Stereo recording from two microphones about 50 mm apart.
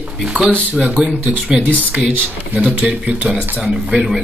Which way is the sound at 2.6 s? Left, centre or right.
Right.